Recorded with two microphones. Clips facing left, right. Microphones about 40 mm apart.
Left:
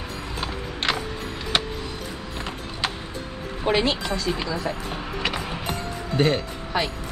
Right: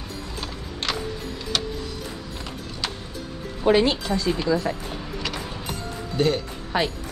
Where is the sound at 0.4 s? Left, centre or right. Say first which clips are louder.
Left 5 dB; left.